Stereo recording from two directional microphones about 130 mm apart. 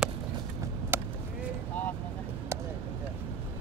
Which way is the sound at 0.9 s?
15° right (ahead or behind).